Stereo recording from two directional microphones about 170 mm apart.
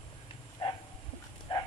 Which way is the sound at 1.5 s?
30° left (ahead or behind).